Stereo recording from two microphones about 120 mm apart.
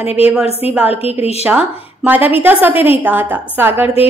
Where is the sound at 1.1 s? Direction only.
60° left (ahead or behind).